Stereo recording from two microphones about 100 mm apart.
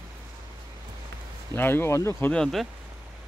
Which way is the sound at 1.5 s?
20° left (ahead or behind).